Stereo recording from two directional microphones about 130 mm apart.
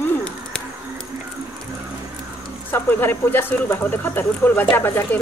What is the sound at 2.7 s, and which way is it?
Speech, 15° left (ahead or behind).